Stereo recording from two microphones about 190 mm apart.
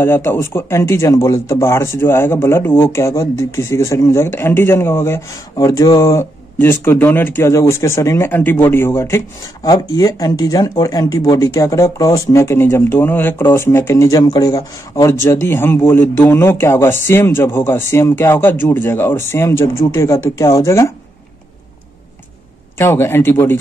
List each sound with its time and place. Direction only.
0.0 s speech: 10° left (ahead or behind)
22.8 s speech: 15° left (ahead or behind)